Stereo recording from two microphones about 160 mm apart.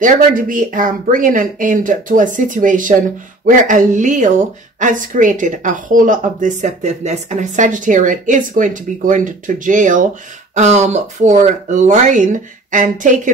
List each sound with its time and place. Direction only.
0.0 s a woman's voice: 55° right (ahead or behind)